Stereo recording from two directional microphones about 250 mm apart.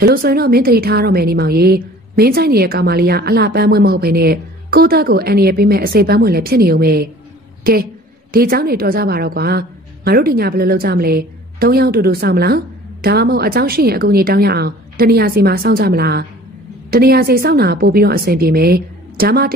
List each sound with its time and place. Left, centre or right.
0.0 s a woman's voice: right